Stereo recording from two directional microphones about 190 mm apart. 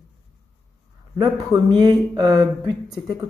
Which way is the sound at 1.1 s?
15° right (ahead or behind).